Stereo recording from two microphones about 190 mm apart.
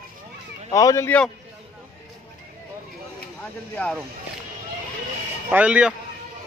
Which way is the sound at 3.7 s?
5° left (ahead or behind).